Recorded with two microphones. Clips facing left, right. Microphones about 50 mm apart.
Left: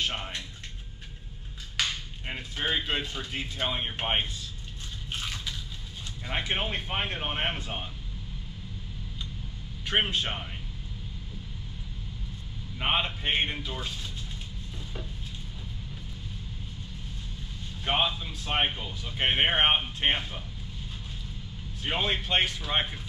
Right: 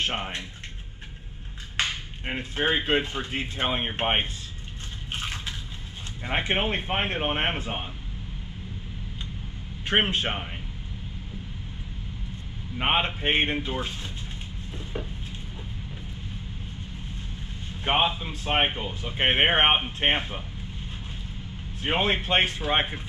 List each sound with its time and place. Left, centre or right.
0.0 s speech: right
1.8 s speech: right
5.1 s a sound: right
6.2 s speech: right
9.8 s speech: right
12.7 s speech: right
14.8 s a sound: right
17.8 s speech: right
21.8 s speech: right